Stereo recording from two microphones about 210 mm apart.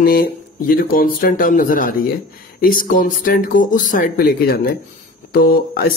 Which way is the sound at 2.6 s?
40° left (ahead or behind).